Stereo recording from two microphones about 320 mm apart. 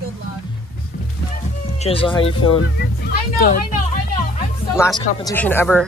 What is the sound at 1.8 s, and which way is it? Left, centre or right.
Speech, centre.